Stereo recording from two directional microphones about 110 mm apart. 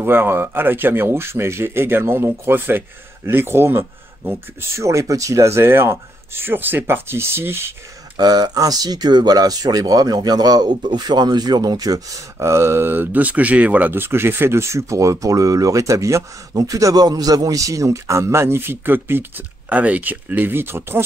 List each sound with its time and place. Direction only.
0.0 s speech: 20° right (ahead or behind)
8.2 s speech: 40° right (ahead or behind); by 21.0 s 20° right (ahead or behind)